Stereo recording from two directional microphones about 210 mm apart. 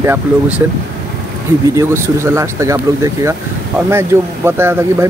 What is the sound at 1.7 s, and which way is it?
Speech, 15° right (ahead or behind).